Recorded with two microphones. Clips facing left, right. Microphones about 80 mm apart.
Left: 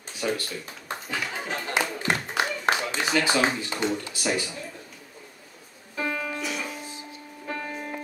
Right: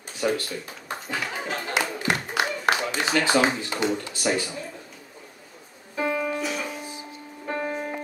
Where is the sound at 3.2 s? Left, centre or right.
Centre.